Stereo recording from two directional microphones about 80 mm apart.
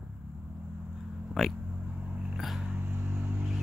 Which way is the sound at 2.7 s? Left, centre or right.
Right.